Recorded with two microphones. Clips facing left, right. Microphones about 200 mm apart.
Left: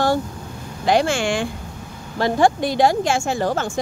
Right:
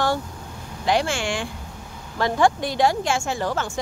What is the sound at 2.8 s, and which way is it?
Speech, 40° left (ahead or behind).